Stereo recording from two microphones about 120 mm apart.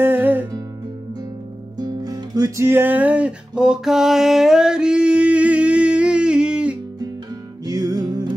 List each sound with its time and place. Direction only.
0.0 s music: 15° right (ahead or behind)
1.8 s music: 35° right (ahead or behind); by 6.8 s 10° right (ahead or behind)
7.6 s music: 35° right (ahead or behind)